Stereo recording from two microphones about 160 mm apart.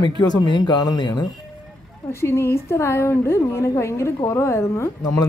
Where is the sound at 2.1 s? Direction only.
15° left (ahead or behind).